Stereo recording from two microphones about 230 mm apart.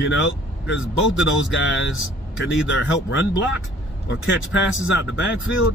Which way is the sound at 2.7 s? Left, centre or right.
Left.